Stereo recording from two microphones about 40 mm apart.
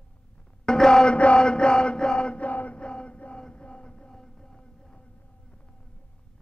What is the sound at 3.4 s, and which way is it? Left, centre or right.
Music, left.